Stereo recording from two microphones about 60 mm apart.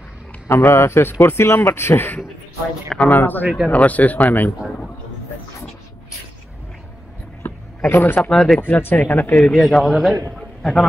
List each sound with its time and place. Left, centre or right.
0.5 s speech: left
3.1 s speech: left
7.4 s a sound: left
8.2 s a man's voice: centre
8.5 s speech: left
9.3 s a man's voice: centre